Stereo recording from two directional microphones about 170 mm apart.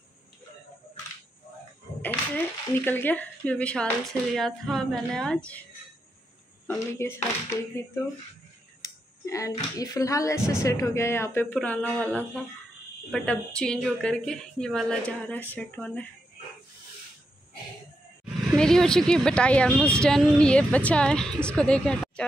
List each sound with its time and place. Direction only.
2.0 s speech: 10° left (ahead or behind)
6.7 s speech: 15° left (ahead or behind)
8.8 s speech: 20° left (ahead or behind)
18.6 s speech: 5° left (ahead or behind)